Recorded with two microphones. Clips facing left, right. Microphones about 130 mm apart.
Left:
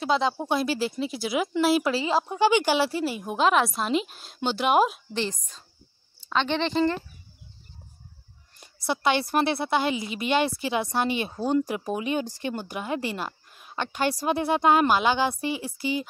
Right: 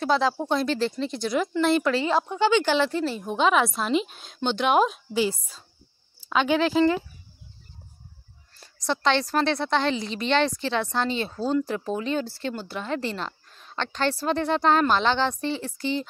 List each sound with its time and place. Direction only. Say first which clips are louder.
0.0 s a woman's voice: right 1 dB; 5° left (ahead or behind)
2.0 s speech: right 1 dB; 30° left (ahead or behind)
2.3 s speech: left 1 dB; 15° left (ahead or behind)
5.1 s a woman's voice: right 5 dB; 10° right (ahead or behind)
8.5 s a woman's voice: right 1 dB; 10° left (ahead or behind)